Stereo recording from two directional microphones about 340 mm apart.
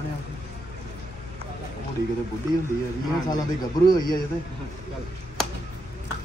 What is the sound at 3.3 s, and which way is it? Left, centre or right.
Speech, centre.